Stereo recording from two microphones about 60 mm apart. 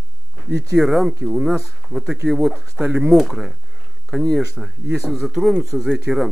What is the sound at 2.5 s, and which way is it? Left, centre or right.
Speech, centre.